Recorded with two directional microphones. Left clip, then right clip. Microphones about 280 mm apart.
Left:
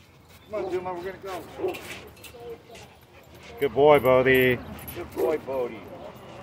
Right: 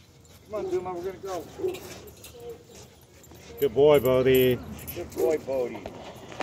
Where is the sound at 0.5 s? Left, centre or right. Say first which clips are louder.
Even; left.